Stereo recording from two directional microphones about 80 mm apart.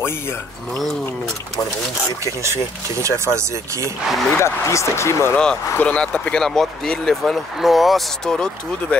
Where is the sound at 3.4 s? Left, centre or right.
Right.